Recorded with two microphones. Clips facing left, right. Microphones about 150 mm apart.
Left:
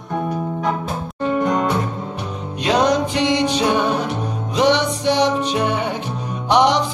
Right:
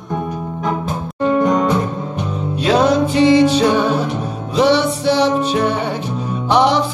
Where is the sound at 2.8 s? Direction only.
15° left (ahead or behind).